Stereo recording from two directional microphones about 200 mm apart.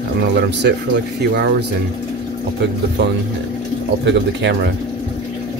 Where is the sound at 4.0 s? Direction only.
60° right (ahead or behind).